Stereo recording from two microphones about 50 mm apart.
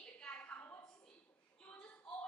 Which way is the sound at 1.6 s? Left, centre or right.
Centre.